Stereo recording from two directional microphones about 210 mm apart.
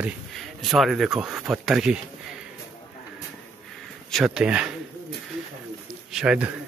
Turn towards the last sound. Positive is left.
turn(degrees=-5)  # may be behind; listen again after turning